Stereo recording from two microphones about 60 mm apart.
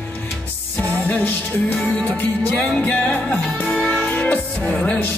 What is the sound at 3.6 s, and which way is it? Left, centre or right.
Music, centre.